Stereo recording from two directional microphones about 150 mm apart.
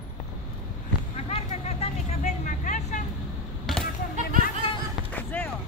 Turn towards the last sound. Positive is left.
turn(degrees=10)  # may be behind; listen again after turning